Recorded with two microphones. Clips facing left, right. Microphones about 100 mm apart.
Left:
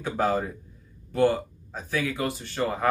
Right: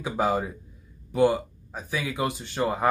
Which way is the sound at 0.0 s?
15° right (ahead or behind).